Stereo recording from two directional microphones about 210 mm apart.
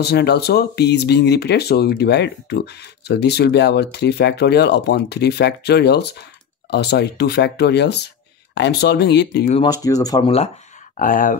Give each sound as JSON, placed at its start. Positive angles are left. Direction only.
{"t": 0.0, "sound": "speech", "side_deg": 50}
{"t": 9.5, "sound": "speech", "side_deg": 20}
{"t": 11.0, "sound": "speech", "side_deg": 40}